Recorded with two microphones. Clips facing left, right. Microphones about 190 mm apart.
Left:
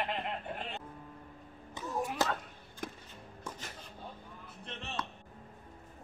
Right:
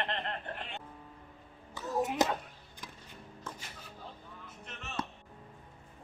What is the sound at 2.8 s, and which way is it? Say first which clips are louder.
Music: left 9 dB; 55° left (ahead or behind).